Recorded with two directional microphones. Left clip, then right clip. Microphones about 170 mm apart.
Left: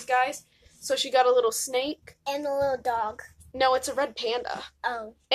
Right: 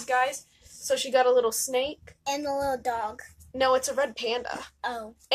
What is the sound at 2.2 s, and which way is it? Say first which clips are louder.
A woman's voice: left 1 dB; 30° right (ahead or behind).